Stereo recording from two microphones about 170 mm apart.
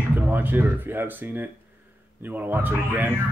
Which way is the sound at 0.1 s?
10° right (ahead or behind).